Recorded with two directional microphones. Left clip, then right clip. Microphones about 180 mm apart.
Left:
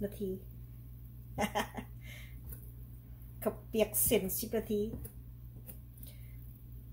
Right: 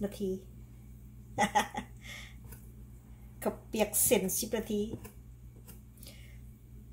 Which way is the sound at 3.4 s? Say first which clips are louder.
Even; 45° right (ahead or behind).